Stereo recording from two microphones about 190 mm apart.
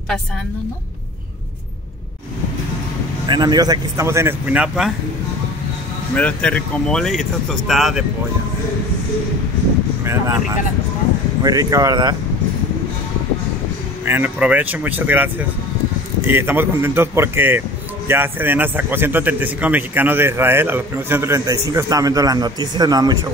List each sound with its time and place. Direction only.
3.3 s speech: 20° right (ahead or behind); by 4.9 s 5° right (ahead or behind)
6.1 s speech: 5° left (ahead or behind)
11.4 s speech: 20° right (ahead or behind)
14.0 s speech: 10° right (ahead or behind)